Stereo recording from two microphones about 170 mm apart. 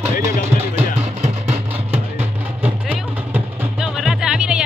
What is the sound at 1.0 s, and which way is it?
Music, 40° right (ahead or behind).